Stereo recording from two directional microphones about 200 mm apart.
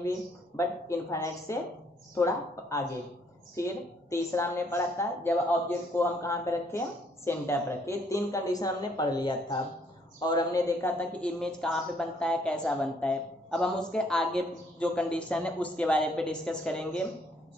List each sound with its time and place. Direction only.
0.6 s a woman's voice: 15° left (ahead or behind)